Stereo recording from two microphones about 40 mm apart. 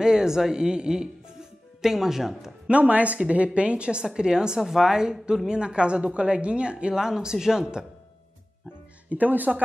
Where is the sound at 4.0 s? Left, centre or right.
Centre.